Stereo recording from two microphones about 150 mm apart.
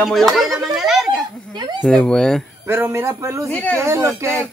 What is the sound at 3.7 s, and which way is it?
Speech, 20° right (ahead or behind).